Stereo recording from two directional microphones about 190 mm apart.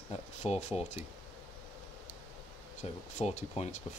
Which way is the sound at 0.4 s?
30° left (ahead or behind).